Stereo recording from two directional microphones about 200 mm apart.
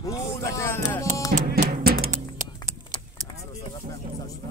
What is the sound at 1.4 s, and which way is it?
Music, 45° right (ahead or behind).